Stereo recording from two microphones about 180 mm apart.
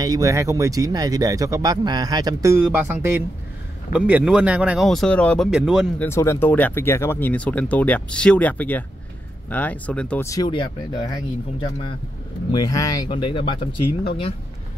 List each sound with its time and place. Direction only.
0.0 s speech: 20° right (ahead or behind); by 5.5 s 5° left (ahead or behind)
5.5 s speech: 5° right (ahead or behind)
5.9 s speech: 15° left (ahead or behind)
12.4 s speech: 20° left (ahead or behind)